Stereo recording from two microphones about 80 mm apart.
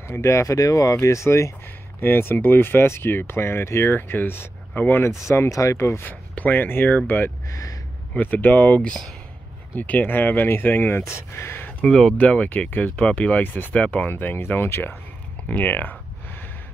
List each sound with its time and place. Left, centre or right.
0.1 s speech: left
2.0 s speech: left
6.0 s speech: left
7.4 s speech: left
8.1 s speech: left
11.8 s speech: centre
14.1 s speech: left
15.4 s a sound: centre